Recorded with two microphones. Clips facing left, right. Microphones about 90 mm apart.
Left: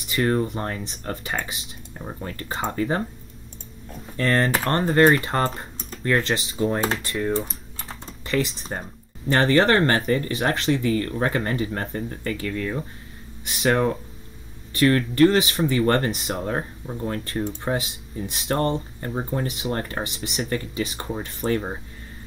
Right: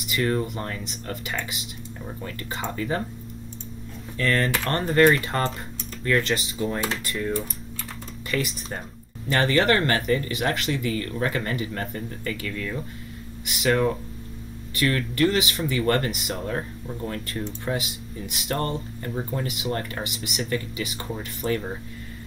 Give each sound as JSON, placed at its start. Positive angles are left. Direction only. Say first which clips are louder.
{"t": 0.0, "sound": "speech", "louder": "left 3 dB", "side_deg": 35}
{"t": 4.2, "sound": "speech", "louder": "left 2 dB", "side_deg": 35}